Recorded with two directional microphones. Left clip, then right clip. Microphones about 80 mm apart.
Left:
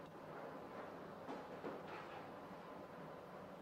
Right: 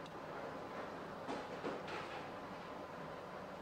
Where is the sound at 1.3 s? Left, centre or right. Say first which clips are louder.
Right 6 dB; left.